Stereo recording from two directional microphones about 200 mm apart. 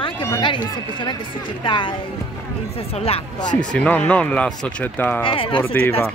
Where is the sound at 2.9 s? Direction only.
30° left (ahead or behind).